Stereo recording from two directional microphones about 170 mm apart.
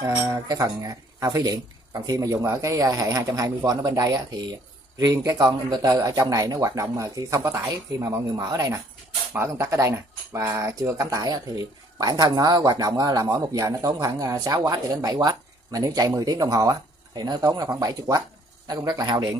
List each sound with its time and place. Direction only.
0.1 s speech: 20° right (ahead or behind)